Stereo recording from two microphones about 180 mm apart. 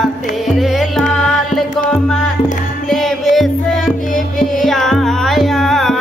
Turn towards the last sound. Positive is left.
turn(degrees=0)  # may be behind; listen again after turning